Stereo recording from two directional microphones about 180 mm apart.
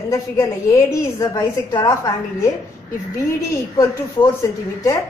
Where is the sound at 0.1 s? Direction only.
15° left (ahead or behind).